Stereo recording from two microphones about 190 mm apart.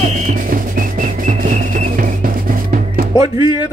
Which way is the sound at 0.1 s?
40° right (ahead or behind).